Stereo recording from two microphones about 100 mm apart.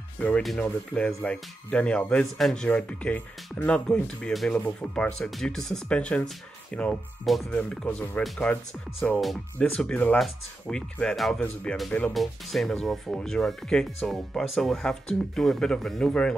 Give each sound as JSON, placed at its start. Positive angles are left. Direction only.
{"t": 0.2, "sound": "speech", "side_deg": 15}
{"t": 4.5, "sound": "speech", "side_deg": 15}
{"t": 5.3, "sound": "speech", "side_deg": 5}
{"t": 7.3, "sound": "speech", "side_deg": 0}
{"t": 7.7, "sound": "speech", "side_deg": 10}
{"t": 9.2, "sound": "speech", "side_deg": 0}
{"t": 9.8, "sound": "speech", "side_deg": 10}
{"t": 12.1, "sound": "speech", "side_deg": 0}